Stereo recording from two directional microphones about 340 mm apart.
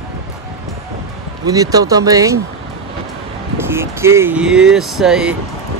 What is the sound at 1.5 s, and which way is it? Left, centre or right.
Speech, centre.